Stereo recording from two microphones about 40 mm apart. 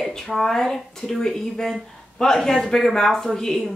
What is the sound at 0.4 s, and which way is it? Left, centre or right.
Speech, centre.